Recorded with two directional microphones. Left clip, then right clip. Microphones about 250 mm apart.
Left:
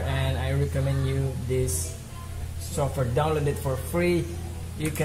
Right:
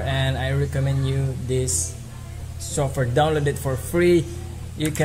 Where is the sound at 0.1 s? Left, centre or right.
Right.